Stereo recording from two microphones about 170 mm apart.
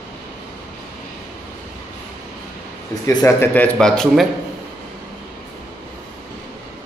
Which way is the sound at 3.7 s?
5° left (ahead or behind).